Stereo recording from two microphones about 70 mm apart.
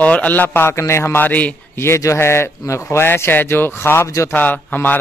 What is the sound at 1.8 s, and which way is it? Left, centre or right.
A man's voice, left.